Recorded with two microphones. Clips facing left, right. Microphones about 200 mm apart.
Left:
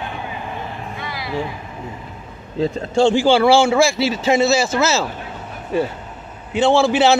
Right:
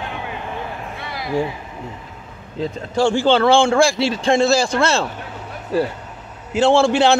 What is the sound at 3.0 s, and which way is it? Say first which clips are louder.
Speech: left 3 dB; 20° left (ahead or behind).